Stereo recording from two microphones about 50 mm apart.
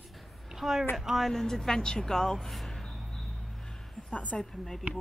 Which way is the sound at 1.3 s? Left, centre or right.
Centre.